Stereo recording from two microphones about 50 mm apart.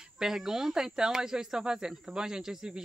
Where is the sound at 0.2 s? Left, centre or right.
Centre.